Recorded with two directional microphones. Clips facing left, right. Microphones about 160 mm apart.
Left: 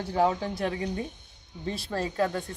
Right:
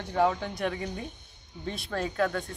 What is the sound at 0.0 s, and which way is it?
Speech, 30° left (ahead or behind).